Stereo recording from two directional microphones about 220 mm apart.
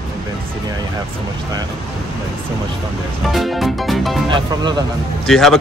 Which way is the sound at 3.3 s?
Centre (ahead or behind).